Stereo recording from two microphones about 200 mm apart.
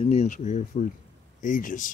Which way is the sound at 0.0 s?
35° left (ahead or behind).